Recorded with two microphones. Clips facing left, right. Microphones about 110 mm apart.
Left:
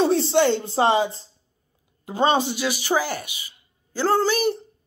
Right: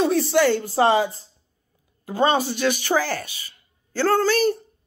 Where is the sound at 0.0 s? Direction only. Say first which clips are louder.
Even; 25° left (ahead or behind).